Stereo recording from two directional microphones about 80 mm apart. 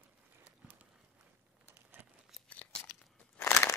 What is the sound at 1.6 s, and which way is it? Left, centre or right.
Crumpling, right.